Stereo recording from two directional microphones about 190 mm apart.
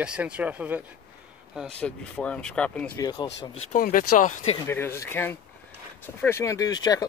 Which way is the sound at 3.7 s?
45° left (ahead or behind).